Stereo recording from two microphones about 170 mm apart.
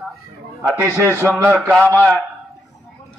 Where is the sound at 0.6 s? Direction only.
15° right (ahead or behind).